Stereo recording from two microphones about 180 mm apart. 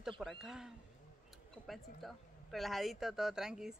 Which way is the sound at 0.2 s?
Centre (ahead or behind).